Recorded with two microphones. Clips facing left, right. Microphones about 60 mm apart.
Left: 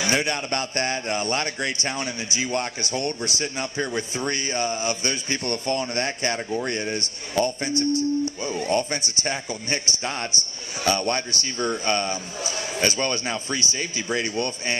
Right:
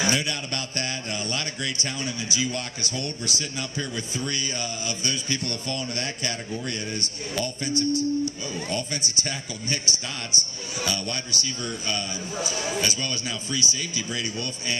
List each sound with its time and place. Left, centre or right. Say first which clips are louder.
0.0 s speech: left 2 dB; left